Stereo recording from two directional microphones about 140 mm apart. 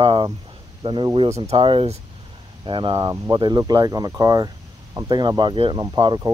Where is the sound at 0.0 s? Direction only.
35° right (ahead or behind).